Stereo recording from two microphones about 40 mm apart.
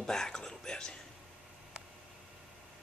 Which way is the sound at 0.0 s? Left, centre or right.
Centre.